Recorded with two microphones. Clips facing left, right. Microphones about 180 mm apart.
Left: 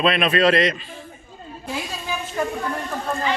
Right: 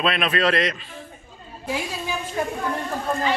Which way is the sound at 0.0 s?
Centre (ahead or behind).